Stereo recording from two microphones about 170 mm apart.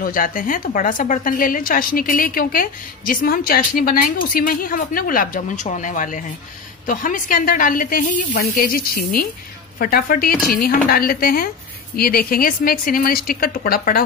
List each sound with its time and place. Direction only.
0.0 s a woman's voice: 55° left (ahead or behind)